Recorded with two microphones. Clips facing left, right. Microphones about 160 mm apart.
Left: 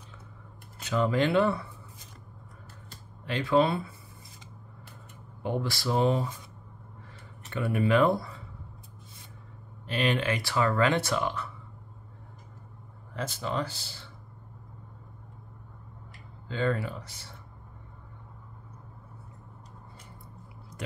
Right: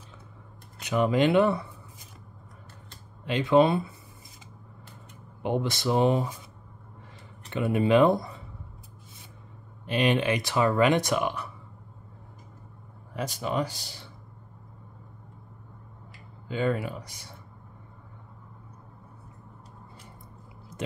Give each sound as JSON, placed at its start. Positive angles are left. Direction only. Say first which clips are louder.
{"t": 0.7, "sound": "speech", "louder": "right 3 dB", "side_deg": -15}
{"t": 3.3, "sound": "speech", "louder": "right 4 dB", "side_deg": -20}
{"t": 5.4, "sound": "speech", "louder": "right 3 dB", "side_deg": -20}
{"t": 7.4, "sound": "speech", "louder": "right 3 dB", "side_deg": -20}
{"t": 9.8, "sound": "speech", "louder": "right 3 dB", "side_deg": -20}
{"t": 13.1, "sound": "speech", "louder": "right 3 dB", "side_deg": -15}
{"t": 16.4, "sound": "speech", "louder": "right 2 dB", "side_deg": -15}